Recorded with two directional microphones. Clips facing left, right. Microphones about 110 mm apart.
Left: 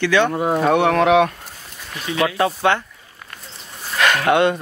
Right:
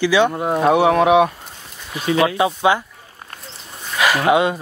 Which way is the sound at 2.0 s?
30° right (ahead or behind).